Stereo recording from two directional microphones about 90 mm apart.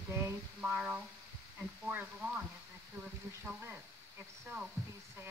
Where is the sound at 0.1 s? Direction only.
30° right (ahead or behind).